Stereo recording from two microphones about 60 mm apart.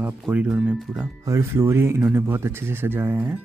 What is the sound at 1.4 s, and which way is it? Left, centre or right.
Speech, right.